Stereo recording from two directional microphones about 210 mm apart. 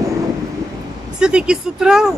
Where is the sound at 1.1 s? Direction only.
5° right (ahead or behind).